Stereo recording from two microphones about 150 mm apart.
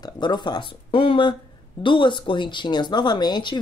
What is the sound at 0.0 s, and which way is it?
Speech, 30° left (ahead or behind).